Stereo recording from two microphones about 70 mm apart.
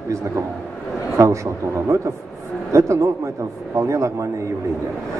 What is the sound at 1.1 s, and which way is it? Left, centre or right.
Speech, right.